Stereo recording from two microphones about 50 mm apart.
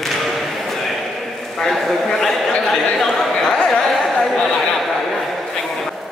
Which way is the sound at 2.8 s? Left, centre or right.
Centre.